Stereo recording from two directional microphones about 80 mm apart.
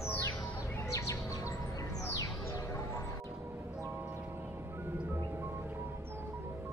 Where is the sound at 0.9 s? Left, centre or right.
Left.